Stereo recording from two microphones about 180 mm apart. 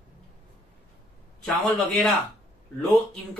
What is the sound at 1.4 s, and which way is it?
Speech, 5° left (ahead or behind).